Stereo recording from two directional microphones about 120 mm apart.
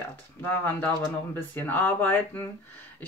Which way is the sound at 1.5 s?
15° left (ahead or behind).